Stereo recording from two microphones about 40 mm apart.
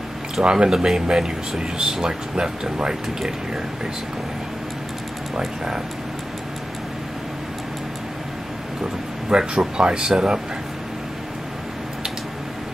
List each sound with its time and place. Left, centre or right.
0.4 s speech: right
9.3 s speech: centre